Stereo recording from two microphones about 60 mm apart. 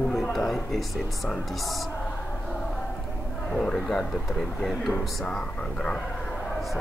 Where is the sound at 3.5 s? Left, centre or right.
Centre.